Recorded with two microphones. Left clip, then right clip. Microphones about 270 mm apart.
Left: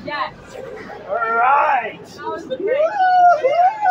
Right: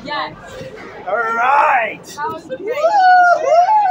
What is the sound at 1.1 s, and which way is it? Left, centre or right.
Speech, right.